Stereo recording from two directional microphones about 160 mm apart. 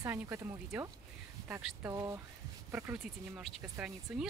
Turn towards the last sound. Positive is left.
turn(degrees=-5)  # may be behind; listen again after turning